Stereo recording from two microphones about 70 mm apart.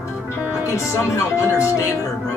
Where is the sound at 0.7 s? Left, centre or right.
Left.